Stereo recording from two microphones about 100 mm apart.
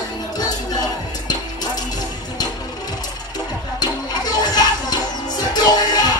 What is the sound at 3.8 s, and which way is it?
Music, 45° left (ahead or behind).